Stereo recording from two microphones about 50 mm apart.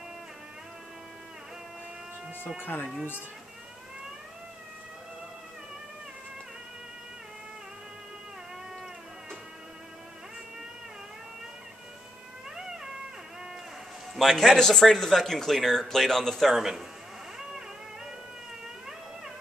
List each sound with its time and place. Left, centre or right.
2.6 s speech: left
14.1 s speech: centre